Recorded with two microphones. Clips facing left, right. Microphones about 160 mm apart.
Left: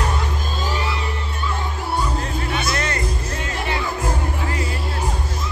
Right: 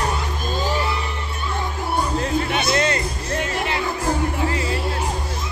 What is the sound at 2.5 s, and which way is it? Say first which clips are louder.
Music: right 2 dB; 20° right (ahead or behind).